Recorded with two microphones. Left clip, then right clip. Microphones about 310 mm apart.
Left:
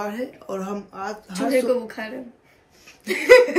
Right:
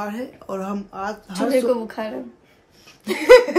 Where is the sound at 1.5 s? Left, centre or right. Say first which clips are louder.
Right 1 dB; centre.